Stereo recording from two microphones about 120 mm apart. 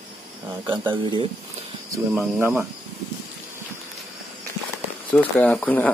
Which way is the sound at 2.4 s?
20° right (ahead or behind).